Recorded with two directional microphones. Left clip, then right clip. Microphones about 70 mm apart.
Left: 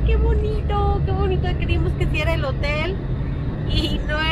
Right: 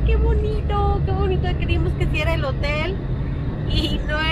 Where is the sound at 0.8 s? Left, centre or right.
Left.